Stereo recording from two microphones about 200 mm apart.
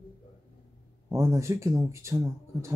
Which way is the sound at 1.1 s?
15° right (ahead or behind).